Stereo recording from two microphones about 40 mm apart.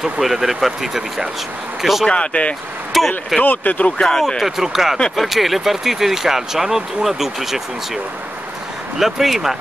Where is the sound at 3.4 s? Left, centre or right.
Left.